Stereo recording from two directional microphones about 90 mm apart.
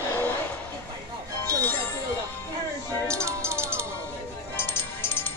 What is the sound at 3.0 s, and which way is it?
Music, 35° right (ahead or behind).